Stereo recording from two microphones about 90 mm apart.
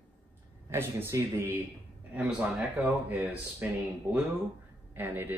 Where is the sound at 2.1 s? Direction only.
15° right (ahead or behind).